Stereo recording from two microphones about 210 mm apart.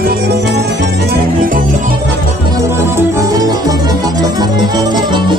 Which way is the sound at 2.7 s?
10° right (ahead or behind).